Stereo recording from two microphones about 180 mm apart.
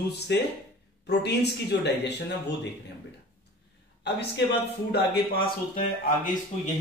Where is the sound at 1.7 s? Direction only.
75° left (ahead or behind).